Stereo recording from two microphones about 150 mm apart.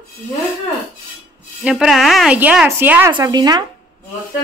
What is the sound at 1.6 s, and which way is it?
A woman's voice, 5° right (ahead or behind).